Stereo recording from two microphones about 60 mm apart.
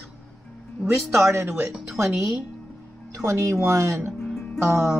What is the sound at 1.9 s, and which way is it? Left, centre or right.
A woman's voice, right.